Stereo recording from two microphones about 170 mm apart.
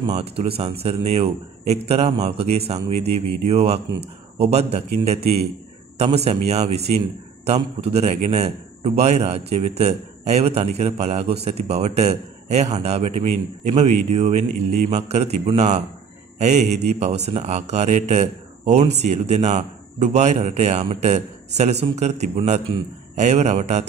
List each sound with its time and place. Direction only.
0.0 s a man's voice: 35° right (ahead or behind)